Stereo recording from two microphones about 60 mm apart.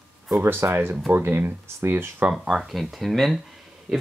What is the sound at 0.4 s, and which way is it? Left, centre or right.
Speech, right.